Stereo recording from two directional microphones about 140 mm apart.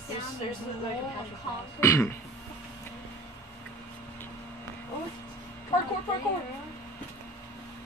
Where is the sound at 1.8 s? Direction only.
20° left (ahead or behind).